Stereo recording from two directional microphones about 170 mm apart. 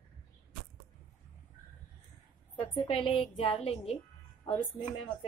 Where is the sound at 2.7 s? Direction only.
30° left (ahead or behind).